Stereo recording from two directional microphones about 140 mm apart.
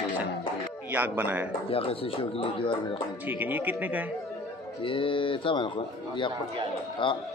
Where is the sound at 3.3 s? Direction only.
15° right (ahead or behind).